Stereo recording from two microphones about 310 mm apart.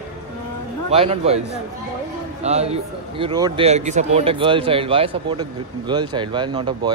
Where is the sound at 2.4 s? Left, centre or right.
Right.